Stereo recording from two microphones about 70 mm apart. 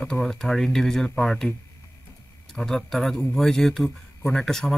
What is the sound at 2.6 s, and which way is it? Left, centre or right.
Speech, centre.